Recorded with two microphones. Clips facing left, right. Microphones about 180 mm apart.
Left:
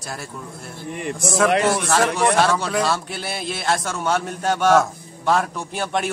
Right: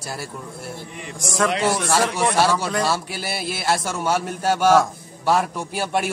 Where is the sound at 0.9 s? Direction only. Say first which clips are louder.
Left 7 dB; 60° left (ahead or behind).